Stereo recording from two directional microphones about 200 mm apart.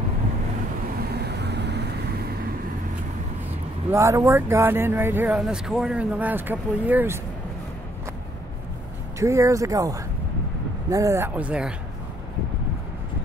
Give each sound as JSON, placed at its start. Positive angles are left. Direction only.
{"t": 1.1, "sound": "vehicle", "side_deg": -55}
{"t": 3.9, "sound": "speech", "side_deg": -15}
{"t": 9.2, "sound": "speech", "side_deg": -15}